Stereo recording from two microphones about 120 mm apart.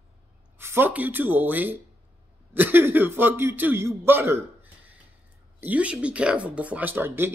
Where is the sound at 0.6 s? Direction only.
20° right (ahead or behind).